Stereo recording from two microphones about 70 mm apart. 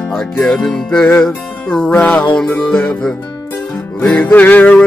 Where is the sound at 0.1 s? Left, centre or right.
Left.